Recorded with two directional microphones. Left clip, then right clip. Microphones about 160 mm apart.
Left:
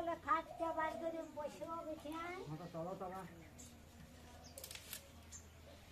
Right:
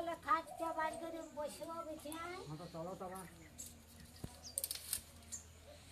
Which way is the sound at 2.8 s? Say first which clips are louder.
Left 1 dB; centre (ahead or behind).